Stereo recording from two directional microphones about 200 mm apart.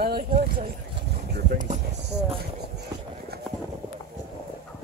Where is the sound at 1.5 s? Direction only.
40° right (ahead or behind).